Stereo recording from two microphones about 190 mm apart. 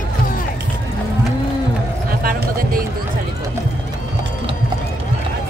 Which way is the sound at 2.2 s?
50° right (ahead or behind).